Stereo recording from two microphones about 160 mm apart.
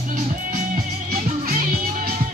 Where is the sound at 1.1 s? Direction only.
65° right (ahead or behind).